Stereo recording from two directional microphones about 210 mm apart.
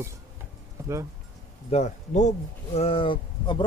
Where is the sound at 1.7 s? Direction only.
35° left (ahead or behind).